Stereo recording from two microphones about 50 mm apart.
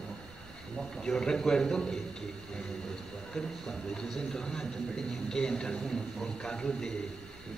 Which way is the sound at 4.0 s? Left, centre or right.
Centre.